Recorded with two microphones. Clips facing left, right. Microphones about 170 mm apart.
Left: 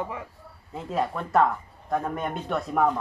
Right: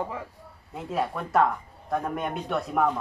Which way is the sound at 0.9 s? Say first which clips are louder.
Left 1 dB; centre (ahead or behind).